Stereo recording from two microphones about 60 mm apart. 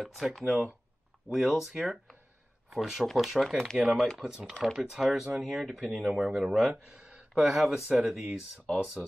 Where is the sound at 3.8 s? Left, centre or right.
Centre.